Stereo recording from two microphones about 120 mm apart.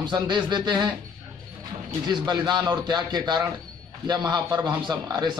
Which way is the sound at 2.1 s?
35° right (ahead or behind).